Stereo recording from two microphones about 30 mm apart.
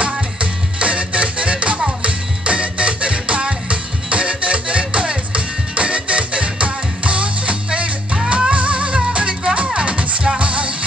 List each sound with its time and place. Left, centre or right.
0.0 s music: right